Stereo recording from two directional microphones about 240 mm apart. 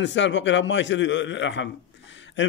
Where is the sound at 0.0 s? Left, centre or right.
Left.